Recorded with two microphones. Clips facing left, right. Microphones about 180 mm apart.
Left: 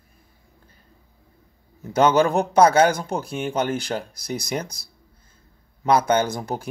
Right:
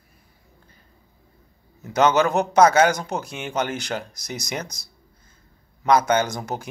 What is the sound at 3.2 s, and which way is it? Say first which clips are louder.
Speech: left 3 dB; 55° left (ahead or behind).